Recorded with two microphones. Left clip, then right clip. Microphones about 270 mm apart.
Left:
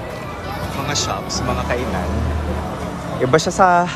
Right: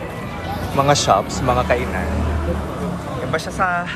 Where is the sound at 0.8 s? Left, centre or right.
Centre.